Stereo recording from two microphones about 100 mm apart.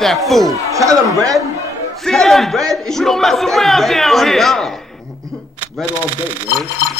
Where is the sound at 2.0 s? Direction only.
5° left (ahead or behind).